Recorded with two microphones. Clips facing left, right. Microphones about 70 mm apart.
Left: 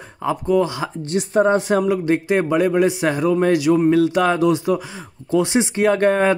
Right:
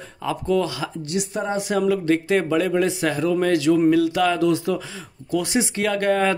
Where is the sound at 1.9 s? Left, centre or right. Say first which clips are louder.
Left 1 dB; left.